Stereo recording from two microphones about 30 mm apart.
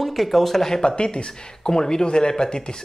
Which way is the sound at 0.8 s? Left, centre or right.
Left.